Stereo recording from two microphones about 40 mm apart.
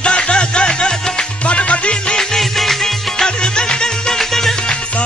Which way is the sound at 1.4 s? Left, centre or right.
Left.